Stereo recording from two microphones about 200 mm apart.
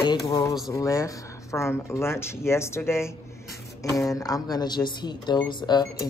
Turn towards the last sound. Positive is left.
turn(degrees=20)  # may be behind; listen again after turning